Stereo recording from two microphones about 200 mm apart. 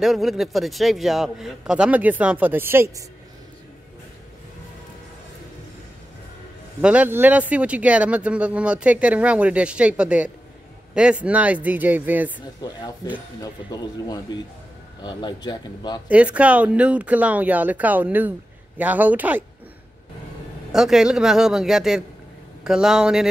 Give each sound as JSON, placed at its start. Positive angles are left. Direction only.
{"t": 0.0, "sound": "a man's voice", "side_deg": 0}
{"t": 6.8, "sound": "speech", "side_deg": -5}
{"t": 12.4, "sound": "speech", "side_deg": 20}
{"t": 16.1, "sound": "speech", "side_deg": -5}
{"t": 20.7, "sound": "a man's voice", "side_deg": 0}